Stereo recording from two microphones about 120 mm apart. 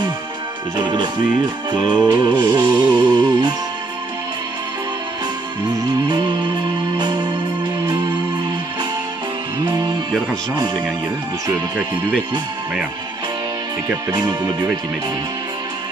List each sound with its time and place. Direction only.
0.7 s music: 35° right (ahead or behind)
5.8 s music: 35° right (ahead or behind)